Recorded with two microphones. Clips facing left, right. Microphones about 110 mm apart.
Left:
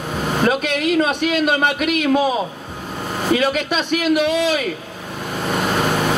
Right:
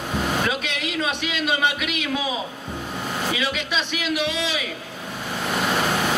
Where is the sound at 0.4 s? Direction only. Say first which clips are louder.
Left 7 dB; 45° left (ahead or behind).